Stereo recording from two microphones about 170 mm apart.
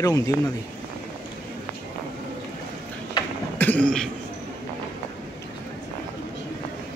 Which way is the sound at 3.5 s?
10° left (ahead or behind).